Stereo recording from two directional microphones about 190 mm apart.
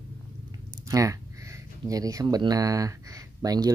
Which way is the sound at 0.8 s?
15° right (ahead or behind).